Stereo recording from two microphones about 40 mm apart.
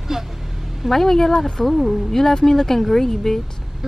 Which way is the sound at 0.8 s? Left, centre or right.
Centre.